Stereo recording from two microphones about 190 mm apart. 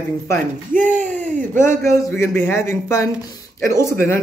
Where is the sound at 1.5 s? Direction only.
40° right (ahead or behind).